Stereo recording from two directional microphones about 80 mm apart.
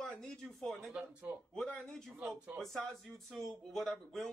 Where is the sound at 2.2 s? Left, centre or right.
Centre.